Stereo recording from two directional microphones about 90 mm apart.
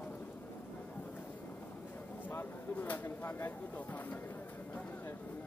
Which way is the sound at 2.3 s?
20° left (ahead or behind).